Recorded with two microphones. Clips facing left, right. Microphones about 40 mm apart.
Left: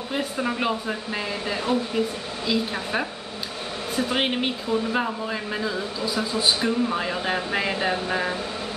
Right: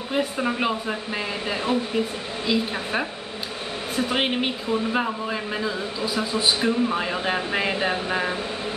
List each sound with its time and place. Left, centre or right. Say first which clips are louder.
0.1 s speech: right 2 dB; centre